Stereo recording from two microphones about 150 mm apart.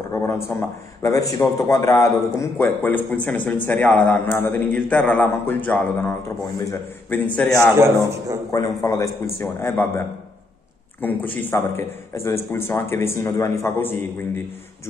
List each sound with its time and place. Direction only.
0.1 s a man's voice: 20° left (ahead or behind)
7.8 s a man's voice: 20° right (ahead or behind)
8.5 s a man's voice: 20° left (ahead or behind)